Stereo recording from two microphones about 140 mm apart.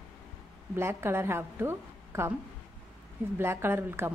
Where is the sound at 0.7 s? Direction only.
20° right (ahead or behind).